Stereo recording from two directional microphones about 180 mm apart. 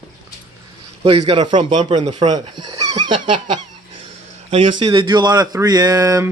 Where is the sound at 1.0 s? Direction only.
25° right (ahead or behind).